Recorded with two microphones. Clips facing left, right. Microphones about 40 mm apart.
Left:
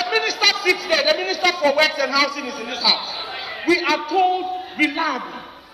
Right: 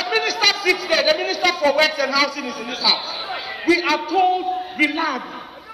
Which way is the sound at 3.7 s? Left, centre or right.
Centre.